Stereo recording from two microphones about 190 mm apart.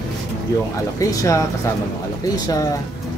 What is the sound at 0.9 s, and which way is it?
Speech, 15° left (ahead or behind).